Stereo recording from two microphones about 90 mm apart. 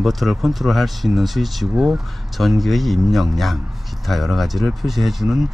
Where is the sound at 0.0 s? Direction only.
Centre (ahead or behind).